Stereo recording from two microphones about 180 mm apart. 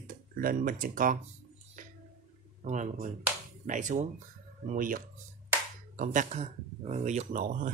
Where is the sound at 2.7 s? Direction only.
45° right (ahead or behind).